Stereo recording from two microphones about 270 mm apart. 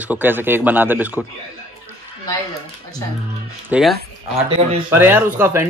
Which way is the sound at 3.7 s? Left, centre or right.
Centre.